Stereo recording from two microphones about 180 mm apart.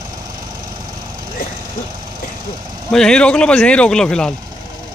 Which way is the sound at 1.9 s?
25° right (ahead or behind).